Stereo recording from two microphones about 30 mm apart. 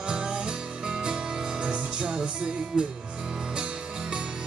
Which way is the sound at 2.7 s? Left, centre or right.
Right.